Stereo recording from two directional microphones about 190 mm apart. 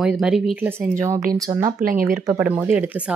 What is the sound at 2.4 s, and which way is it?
Speech, 10° right (ahead or behind).